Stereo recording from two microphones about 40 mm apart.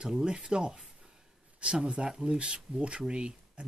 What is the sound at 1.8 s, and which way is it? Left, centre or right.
Speech, right.